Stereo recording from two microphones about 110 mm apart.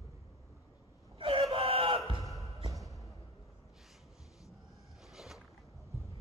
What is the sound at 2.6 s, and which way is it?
Music, 30° right (ahead or behind).